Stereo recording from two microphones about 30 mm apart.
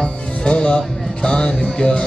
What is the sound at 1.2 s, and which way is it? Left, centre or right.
Music, left.